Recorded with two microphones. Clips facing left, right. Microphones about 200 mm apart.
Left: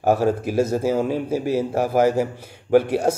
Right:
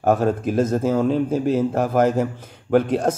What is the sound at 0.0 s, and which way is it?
A man's voice, 10° left (ahead or behind).